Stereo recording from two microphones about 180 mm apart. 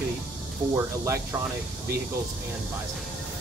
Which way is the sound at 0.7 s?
15° right (ahead or behind).